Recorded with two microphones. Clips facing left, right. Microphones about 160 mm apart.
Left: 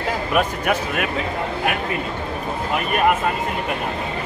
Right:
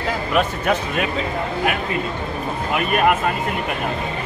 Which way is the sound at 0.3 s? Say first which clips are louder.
Right 1 dB; 10° left (ahead or behind).